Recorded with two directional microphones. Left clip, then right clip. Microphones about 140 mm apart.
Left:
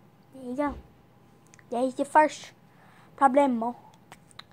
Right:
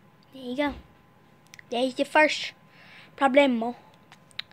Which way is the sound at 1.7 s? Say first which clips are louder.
Right 1 dB; 5° right (ahead or behind).